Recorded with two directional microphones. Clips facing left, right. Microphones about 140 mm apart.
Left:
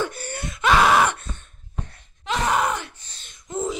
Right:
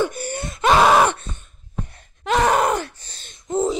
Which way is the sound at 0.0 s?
15° right (ahead or behind).